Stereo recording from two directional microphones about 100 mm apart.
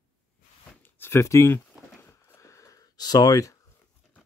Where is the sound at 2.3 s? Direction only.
30° left (ahead or behind).